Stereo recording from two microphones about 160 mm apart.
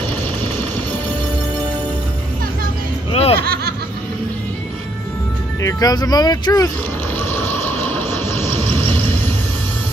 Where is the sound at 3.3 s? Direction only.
70° right (ahead or behind).